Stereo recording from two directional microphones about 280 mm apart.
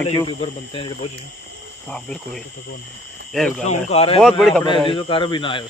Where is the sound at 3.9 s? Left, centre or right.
Left.